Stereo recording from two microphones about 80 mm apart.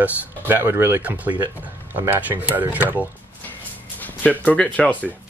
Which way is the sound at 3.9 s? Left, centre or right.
Left.